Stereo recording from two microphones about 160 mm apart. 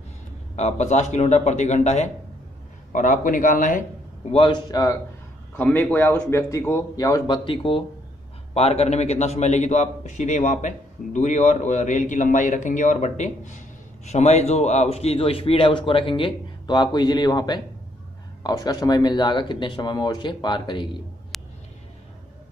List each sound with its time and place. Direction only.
0.6 s a man's voice: 45° left (ahead or behind)
4.3 s a man's voice: 35° left (ahead or behind)
4.6 s speech: 20° left (ahead or behind)
5.6 s a man's voice: 10° left (ahead or behind); by 20.9 s 30° left (ahead or behind)
21.3 s a sound: centre (ahead or behind)